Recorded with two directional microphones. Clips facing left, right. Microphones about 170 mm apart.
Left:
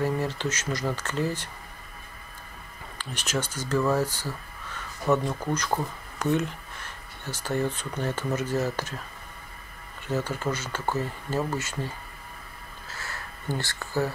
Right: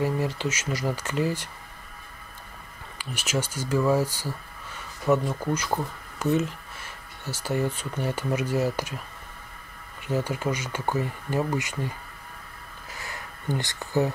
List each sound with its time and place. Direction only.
0.0 s speech: 10° right (ahead or behind)
3.0 s speech: 10° right (ahead or behind)
10.0 s speech: 10° right (ahead or behind)
12.9 s a sound: 15° right (ahead or behind)